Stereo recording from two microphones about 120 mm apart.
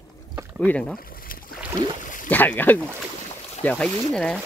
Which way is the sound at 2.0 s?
90° left.